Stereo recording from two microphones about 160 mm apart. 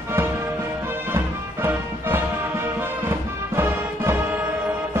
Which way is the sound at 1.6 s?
15° right (ahead or behind).